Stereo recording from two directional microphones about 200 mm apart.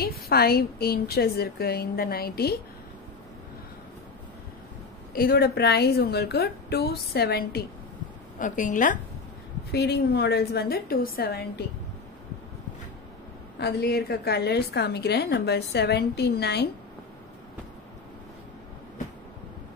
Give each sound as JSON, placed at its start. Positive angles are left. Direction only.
{"t": 0.0, "sound": "a woman's voice", "side_deg": 50}
{"t": 5.1, "sound": "a woman's voice", "side_deg": 50}
{"t": 8.4, "sound": "a woman's voice", "side_deg": 40}
{"t": 9.7, "sound": "a woman's voice", "side_deg": 55}
{"t": 13.6, "sound": "a woman's voice", "side_deg": 55}